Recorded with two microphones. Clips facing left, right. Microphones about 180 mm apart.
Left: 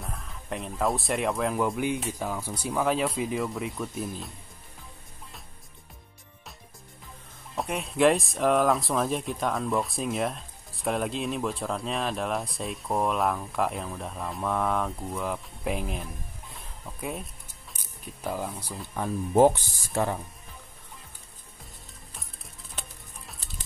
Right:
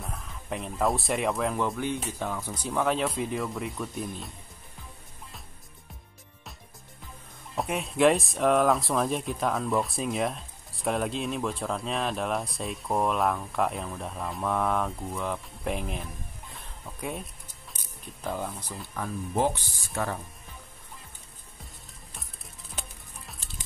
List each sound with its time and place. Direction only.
0.0 s speech: centre (ahead or behind)
7.5 s speech: centre (ahead or behind)
16.5 s cat: centre (ahead or behind)
18.2 s speech: 5° left (ahead or behind)
19.3 s speech: 45° left (ahead or behind)